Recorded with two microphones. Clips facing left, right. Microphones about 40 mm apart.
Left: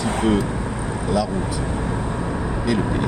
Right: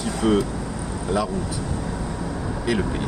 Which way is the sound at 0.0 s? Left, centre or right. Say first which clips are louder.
Left 1 dB; left.